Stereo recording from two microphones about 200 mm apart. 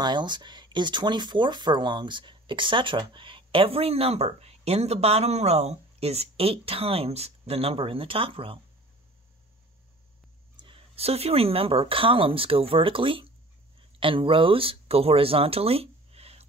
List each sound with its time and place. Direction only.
0.0 s speech: 20° right (ahead or behind)
10.6 s speech: 30° right (ahead or behind)